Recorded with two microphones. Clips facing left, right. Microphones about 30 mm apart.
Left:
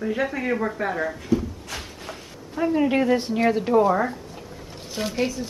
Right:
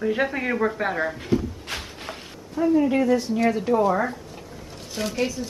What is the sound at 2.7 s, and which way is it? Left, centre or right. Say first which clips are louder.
Speech: even; left.